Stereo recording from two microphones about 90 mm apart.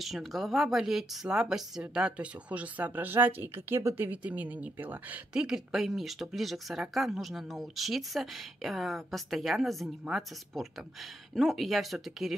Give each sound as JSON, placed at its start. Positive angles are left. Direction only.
{"t": 0.0, "sound": "speech", "side_deg": 0}